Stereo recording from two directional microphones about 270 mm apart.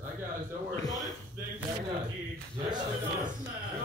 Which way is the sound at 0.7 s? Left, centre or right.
Centre.